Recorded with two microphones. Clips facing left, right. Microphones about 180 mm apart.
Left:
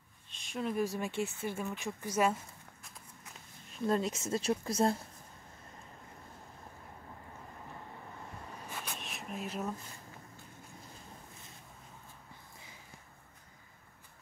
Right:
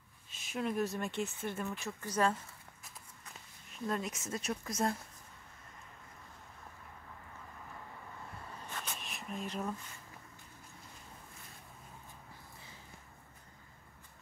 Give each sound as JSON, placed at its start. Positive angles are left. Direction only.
{"t": 0.3, "sound": "speech", "side_deg": -5}
{"t": 3.8, "sound": "speech", "side_deg": 30}
{"t": 8.5, "sound": "a sound", "side_deg": 10}